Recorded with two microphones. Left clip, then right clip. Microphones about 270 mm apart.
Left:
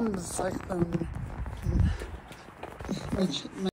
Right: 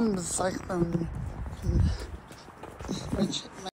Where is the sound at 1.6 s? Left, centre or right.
Centre.